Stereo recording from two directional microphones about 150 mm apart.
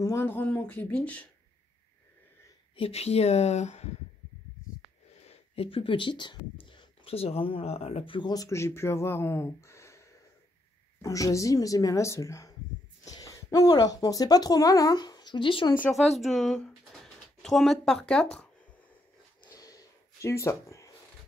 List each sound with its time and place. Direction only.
0.0 s speech: 15° left (ahead or behind)
2.7 s speech: 40° left (ahead or behind)
5.2 s speech: 40° left (ahead or behind)
16.2 s speech: centre (ahead or behind)
19.5 s a sound: 25° left (ahead or behind)